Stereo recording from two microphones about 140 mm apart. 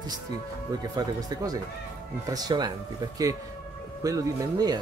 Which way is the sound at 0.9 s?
25° right (ahead or behind).